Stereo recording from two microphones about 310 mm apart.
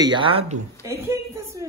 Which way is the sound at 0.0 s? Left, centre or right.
Centre.